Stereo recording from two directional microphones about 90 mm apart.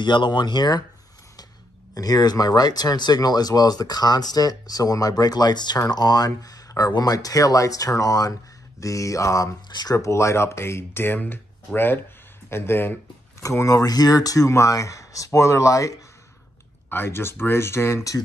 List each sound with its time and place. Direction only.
0.0 s speech: 60° left (ahead or behind)
2.0 s speech: 45° left (ahead or behind)
9.7 s speech: 50° left (ahead or behind)
9.9 s speech: 35° left (ahead or behind)
13.4 s speech: 35° left (ahead or behind)
16.9 s speech: 25° left (ahead or behind)